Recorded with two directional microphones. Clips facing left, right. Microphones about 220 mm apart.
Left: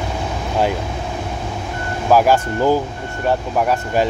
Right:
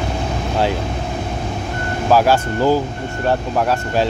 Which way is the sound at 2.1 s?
15° left (ahead or behind).